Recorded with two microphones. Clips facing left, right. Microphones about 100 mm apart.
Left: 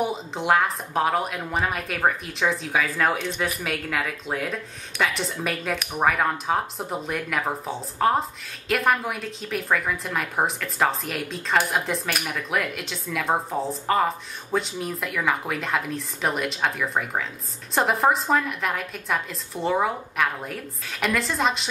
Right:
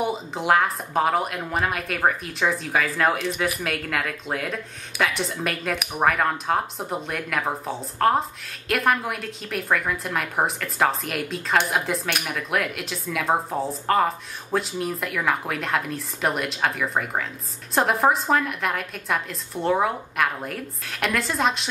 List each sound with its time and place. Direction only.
0.0 s speech: centre (ahead or behind)